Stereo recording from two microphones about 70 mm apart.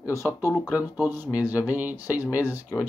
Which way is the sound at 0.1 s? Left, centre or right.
Right.